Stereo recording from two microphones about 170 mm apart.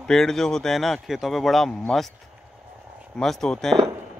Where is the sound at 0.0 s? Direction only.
5° left (ahead or behind).